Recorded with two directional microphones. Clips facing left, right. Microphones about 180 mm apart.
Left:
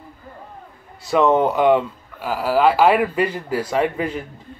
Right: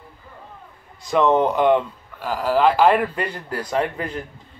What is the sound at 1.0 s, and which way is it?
Speech, 5° left (ahead or behind).